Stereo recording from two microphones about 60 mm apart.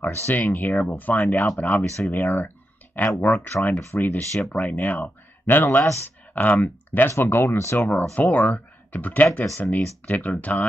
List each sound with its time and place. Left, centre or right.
0.1 s speech: left
0.4 s speech: left
2.1 s a sound: left
3.2 s speech: left
7.7 s speech: left